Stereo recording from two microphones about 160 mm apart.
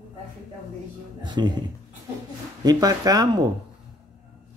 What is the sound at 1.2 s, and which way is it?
Speech, 30° right (ahead or behind).